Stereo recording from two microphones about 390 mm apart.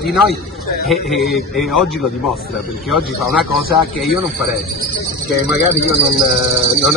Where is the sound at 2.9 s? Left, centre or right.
Centre.